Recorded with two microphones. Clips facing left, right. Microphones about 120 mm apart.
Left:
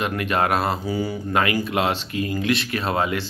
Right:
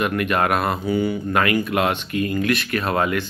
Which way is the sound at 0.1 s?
30° left (ahead or behind).